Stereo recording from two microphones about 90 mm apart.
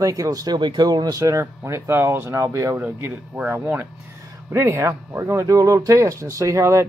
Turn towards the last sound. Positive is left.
turn(degrees=-35)  # may be behind; listen again after turning